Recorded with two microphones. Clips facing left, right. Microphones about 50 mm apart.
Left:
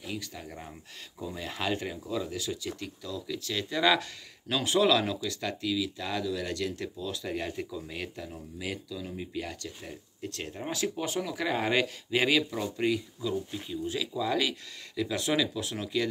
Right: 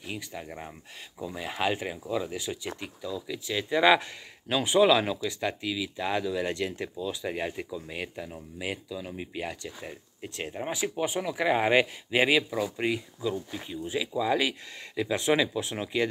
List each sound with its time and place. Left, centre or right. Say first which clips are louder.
0.0 s speech: right 1 dB; right